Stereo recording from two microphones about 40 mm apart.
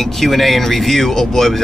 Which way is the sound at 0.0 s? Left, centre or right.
Centre.